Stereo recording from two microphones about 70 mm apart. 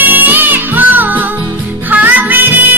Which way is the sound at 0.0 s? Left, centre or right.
Right.